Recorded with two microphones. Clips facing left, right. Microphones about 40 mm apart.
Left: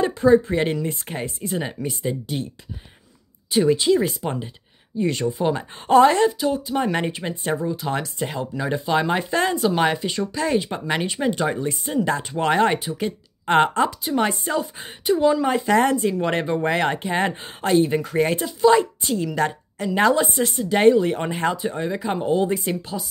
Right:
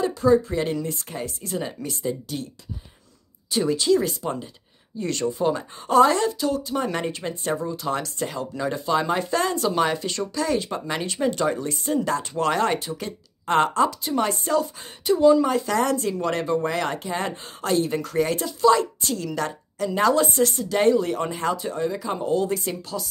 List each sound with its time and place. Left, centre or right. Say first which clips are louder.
0.0 s speech: left 3 dB; left
3.4 s speech: left 3 dB; left
9.9 s speech: left 3 dB; centre
10.3 s speech: left 1 dB; left
12.4 s speech: left 4 dB; left
14.1 s speech: left 2 dB; centre
14.5 s speech: right 2 dB; left
16.0 s speech: left 4 dB; centre
16.3 s speech: left 2 dB; left; by 19.3 s centre
19.3 s a woman's voice: left 5 dB; left
20.3 s speech: left 1 dB; centre; by 21.5 s left
21.5 s speech: left 1 dB; left